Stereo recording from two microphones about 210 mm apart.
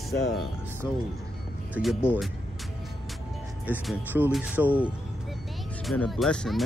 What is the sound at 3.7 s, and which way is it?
Speech, 10° right (ahead or behind).